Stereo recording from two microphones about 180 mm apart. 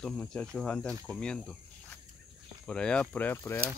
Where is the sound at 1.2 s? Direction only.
5° left (ahead or behind).